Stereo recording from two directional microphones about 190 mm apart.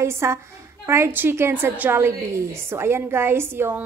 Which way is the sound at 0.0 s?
15° right (ahead or behind).